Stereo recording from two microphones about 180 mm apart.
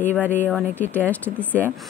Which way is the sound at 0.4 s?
10° left (ahead or behind).